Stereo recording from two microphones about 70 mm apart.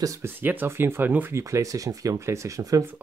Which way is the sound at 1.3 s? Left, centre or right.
Right.